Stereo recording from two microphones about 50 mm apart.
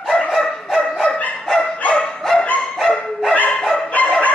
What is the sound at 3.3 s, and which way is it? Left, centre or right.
Dog, left.